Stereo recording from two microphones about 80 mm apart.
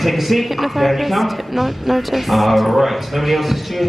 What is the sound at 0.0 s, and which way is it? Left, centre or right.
Speech, centre.